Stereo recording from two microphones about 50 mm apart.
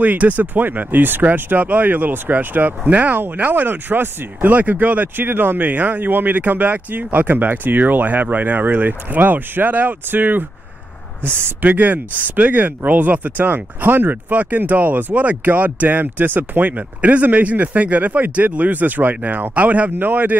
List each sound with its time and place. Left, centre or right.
0.0 s speech: right
4.5 s speech: right
11.2 s speech: right
11.6 s speech: right